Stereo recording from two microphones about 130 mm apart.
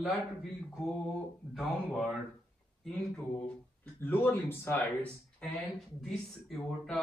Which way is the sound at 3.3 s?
10° left (ahead or behind).